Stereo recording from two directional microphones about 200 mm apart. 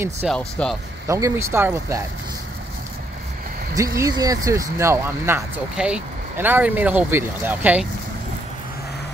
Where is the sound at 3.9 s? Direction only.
15° right (ahead or behind).